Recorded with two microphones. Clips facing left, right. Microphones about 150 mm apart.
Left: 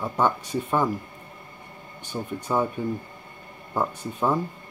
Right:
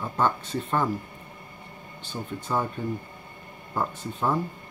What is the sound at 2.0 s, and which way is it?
Speech, 15° left (ahead or behind).